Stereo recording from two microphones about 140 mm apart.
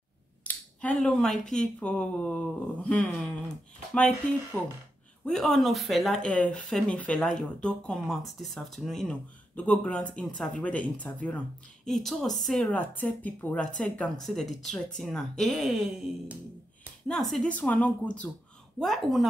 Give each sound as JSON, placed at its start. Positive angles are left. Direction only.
{"t": 0.4, "sound": "speech", "side_deg": 10}
{"t": 4.5, "sound": "speech", "side_deg": 10}
{"t": 17.1, "sound": "speech", "side_deg": 5}